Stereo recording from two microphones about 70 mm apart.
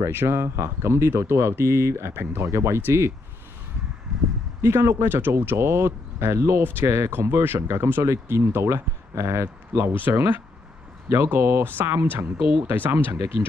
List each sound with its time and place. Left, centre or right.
0.1 s speech: right
4.1 s a sound: centre
4.6 s speech: right
10.0 s speech: right